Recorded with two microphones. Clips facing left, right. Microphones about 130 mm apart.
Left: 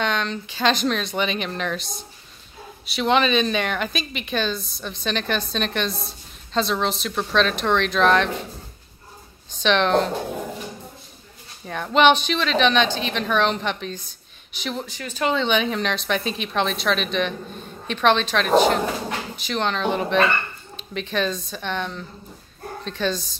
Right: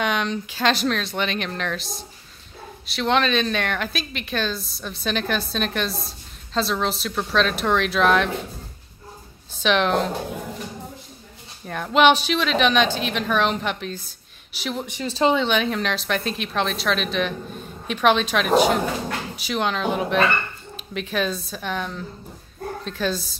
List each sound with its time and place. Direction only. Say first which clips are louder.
0.0 s a woman's voice: right 1 dB; 5° right (ahead or behind)
9.6 s a woman's voice: left 1 dB; 5° right (ahead or behind)
11.6 s a woman's voice: even; centre (ahead or behind)
14.9 s speech: right 6 dB; 25° right (ahead or behind)
15.3 s a woman's voice: even; centre (ahead or behind)